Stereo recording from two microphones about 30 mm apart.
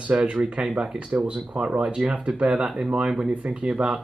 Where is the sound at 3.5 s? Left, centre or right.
Right.